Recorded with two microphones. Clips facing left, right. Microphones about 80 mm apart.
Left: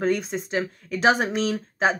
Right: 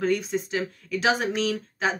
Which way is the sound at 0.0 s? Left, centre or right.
Left.